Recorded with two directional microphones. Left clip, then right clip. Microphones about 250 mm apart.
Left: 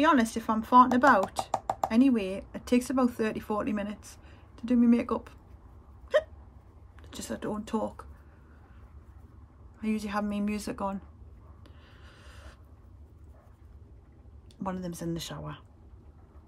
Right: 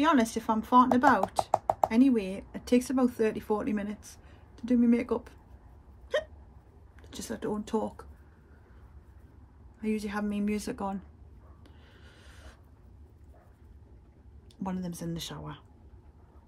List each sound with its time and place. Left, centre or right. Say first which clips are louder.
0.0 s speech: left 1 dB; centre
6.1 s hiccup: left 5 dB; centre
7.0 s speech: even; centre
9.8 s speech: left 1 dB; centre
11.6 s a sound: left 2 dB; centre
14.6 s speech: left 2 dB; centre